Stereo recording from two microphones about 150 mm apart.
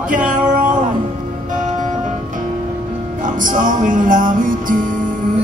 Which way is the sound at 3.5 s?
60° right (ahead or behind).